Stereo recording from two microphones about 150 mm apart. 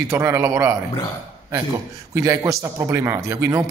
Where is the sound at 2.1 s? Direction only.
20° right (ahead or behind).